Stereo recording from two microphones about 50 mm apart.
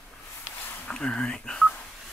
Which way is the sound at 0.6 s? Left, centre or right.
Left.